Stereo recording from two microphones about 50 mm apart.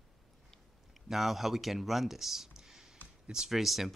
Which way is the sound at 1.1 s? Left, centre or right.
Centre.